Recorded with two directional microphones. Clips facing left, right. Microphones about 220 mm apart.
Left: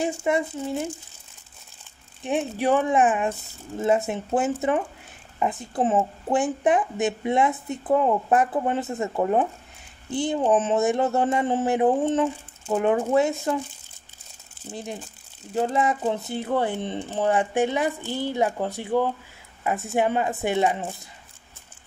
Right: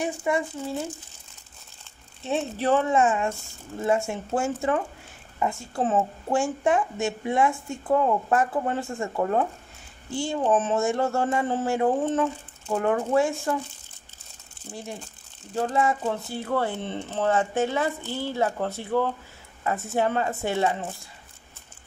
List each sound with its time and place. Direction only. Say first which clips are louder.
0.0 s speech: left 2 dB; 25° left (ahead or behind)
2.2 s speech: left 2 dB; 15° left (ahead or behind)
14.7 s speech: left 3 dB; 20° left (ahead or behind)